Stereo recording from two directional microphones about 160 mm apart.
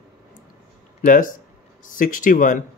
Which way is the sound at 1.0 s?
55° left (ahead or behind).